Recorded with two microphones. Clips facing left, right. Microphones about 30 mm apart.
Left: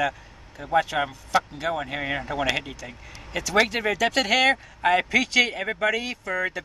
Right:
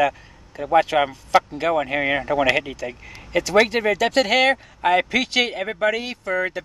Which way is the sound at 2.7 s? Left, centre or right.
Right.